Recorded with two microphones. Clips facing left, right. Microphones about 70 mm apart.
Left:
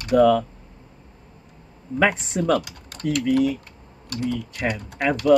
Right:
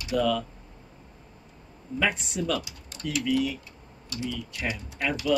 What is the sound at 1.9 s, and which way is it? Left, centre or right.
Speech, left.